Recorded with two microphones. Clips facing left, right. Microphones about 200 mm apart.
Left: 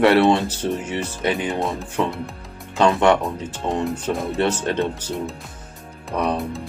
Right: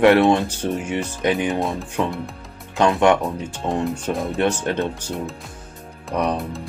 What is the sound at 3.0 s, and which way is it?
Speech, 15° right (ahead or behind).